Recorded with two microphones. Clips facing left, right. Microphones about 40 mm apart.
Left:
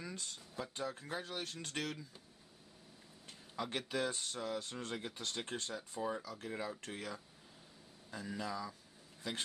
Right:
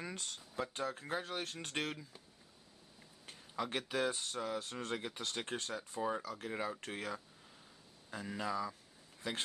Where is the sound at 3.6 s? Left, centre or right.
Centre.